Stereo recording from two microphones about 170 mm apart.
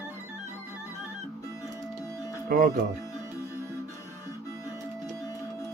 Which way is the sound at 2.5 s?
60° right (ahead or behind).